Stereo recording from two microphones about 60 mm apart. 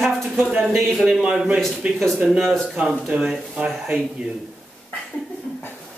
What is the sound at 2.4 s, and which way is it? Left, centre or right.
Speech, centre.